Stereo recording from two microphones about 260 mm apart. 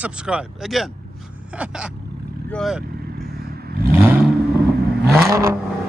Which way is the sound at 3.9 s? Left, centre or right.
Centre.